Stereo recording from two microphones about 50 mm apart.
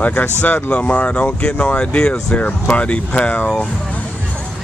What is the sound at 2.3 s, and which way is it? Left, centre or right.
Speech, left.